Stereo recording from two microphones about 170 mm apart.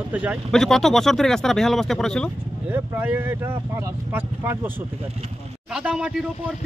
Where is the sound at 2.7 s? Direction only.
10° right (ahead or behind).